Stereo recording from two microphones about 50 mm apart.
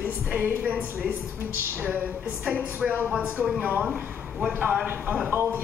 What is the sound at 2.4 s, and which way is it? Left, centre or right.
A woman's voice, right.